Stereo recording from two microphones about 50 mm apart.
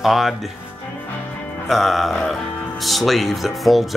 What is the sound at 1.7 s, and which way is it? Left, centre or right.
Speech, centre.